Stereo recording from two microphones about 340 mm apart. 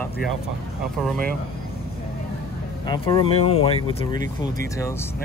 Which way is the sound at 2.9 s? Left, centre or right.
Centre.